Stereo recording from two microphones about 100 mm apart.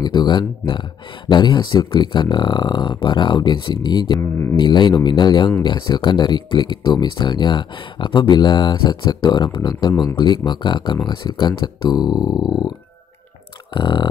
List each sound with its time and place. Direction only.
0.0 s speech: 45° left (ahead or behind)
4.2 s mantra: 25° left (ahead or behind)
4.6 s speech: 50° left (ahead or behind)
13.7 s speech: 50° left (ahead or behind)